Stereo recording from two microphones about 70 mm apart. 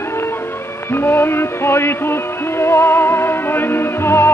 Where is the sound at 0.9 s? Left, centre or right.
Left.